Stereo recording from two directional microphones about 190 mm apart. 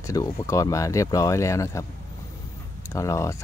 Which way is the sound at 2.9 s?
15° left (ahead or behind).